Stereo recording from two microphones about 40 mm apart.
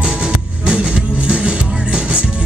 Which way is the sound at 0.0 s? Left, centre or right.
Right.